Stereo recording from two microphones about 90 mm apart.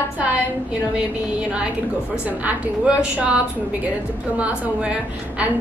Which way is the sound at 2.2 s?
15° right (ahead or behind).